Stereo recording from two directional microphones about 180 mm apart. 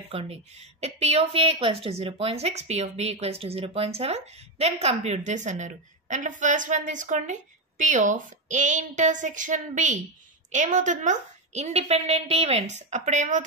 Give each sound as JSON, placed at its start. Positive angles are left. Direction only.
{"t": 0.1, "sound": "a woman's voice", "side_deg": -35}